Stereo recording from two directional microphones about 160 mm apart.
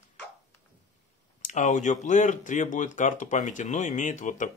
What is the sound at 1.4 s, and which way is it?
Speech, 50° left (ahead or behind).